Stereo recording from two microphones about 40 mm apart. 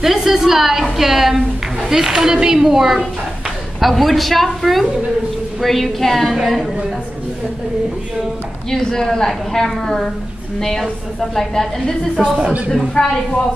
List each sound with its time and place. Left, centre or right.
0.0 s a woman's voice: centre
8.6 s a woman's voice: centre
12.2 s speech: right
13.0 s speech: left